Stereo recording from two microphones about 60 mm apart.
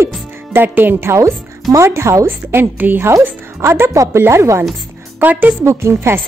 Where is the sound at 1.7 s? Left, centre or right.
Right.